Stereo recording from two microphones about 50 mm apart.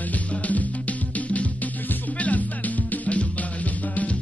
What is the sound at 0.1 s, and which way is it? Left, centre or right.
Music, left.